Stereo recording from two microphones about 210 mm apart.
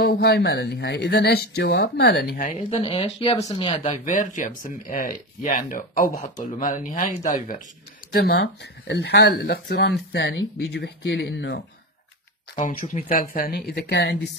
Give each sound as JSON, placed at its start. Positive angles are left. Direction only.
{"t": 0.0, "sound": "speech", "side_deg": 45}
{"t": 2.7, "sound": "speech", "side_deg": 25}
{"t": 8.1, "sound": "speech", "side_deg": 50}
{"t": 12.5, "sound": "speech", "side_deg": 35}